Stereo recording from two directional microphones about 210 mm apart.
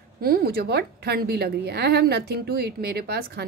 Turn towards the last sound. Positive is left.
turn(degrees=-50)  # may be behind; listen again after turning